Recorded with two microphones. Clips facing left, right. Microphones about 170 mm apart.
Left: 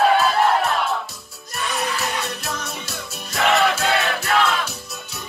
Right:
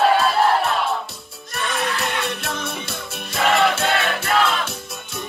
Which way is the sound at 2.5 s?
55° right (ahead or behind).